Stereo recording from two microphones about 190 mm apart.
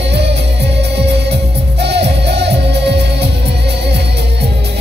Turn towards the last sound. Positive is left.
turn(degrees=-60)  # may be behind; listen again after turning